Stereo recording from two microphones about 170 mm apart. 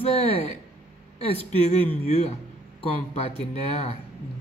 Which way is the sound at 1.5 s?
40° left (ahead or behind).